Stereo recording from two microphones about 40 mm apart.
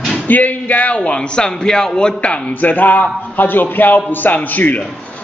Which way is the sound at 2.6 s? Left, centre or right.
Left.